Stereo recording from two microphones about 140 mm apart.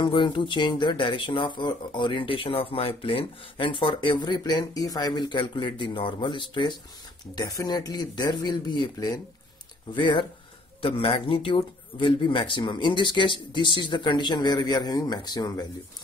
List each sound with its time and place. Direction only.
0.0 s speech: 35° left (ahead or behind)